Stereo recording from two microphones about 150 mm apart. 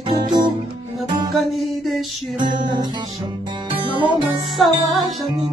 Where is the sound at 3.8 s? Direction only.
35° right (ahead or behind).